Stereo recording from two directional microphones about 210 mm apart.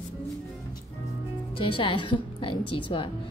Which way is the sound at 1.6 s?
25° left (ahead or behind).